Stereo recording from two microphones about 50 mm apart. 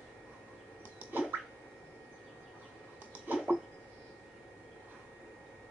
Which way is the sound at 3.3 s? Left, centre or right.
Right.